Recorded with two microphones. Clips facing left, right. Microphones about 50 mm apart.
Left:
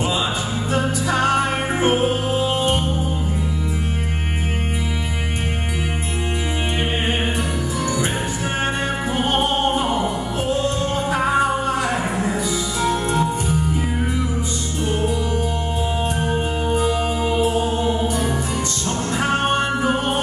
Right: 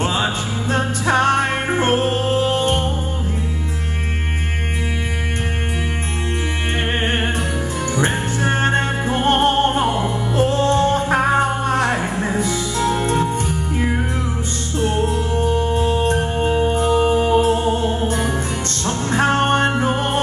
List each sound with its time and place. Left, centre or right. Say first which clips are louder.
0.7 s music: right 3 dB; right
8.0 s music: right 3 dB; right
16.8 s music: right 5 dB; right
18.9 s music: right 4 dB; right